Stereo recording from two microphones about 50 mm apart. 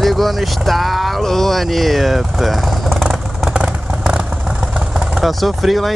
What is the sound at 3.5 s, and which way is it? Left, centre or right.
Vehicle, centre.